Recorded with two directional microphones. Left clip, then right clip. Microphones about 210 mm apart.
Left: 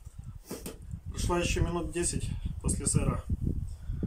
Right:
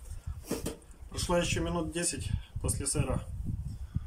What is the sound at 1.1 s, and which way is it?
Speech, centre (ahead or behind).